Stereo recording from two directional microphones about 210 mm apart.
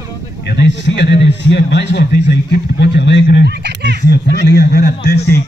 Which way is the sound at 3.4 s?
55° right (ahead or behind).